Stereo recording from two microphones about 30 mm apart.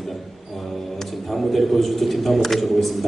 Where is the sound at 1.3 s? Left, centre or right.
Centre.